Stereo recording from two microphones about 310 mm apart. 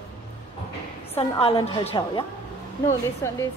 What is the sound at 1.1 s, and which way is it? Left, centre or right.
A woman's voice, centre.